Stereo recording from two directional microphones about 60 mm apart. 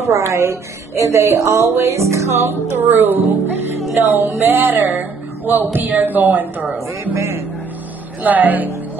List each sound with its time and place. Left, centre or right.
0.0 s speech: right
8.2 s speech: right